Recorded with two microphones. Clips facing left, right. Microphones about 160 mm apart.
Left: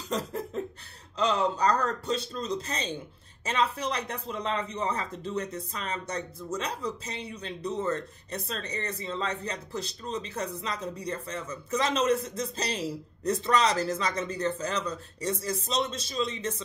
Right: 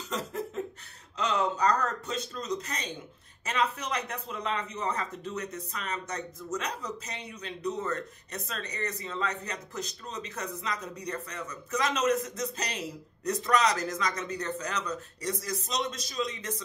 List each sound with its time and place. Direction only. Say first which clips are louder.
0.1 s a man's voice: left 3 dB; 35° left (ahead or behind)